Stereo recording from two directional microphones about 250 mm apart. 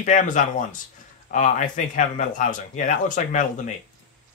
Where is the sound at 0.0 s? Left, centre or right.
Left.